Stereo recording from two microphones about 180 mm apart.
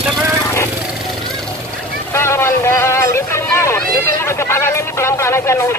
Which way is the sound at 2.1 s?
15° left (ahead or behind).